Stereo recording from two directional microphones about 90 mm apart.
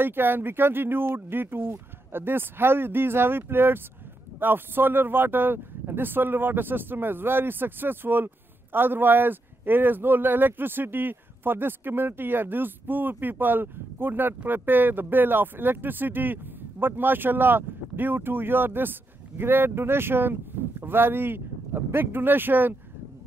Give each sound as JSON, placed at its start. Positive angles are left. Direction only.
{"t": 0.0, "sound": "speech", "side_deg": -25}